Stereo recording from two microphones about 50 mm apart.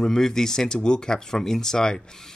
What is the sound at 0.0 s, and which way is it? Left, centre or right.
Speech, centre.